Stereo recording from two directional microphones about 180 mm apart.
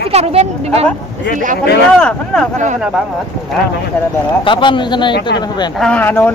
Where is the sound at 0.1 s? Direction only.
35° right (ahead or behind).